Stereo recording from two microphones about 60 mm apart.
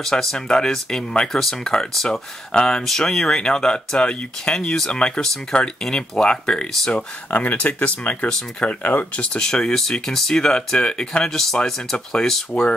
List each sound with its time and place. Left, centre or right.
0.0 s speech: centre